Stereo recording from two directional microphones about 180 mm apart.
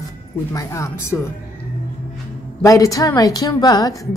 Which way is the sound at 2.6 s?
15° left (ahead or behind).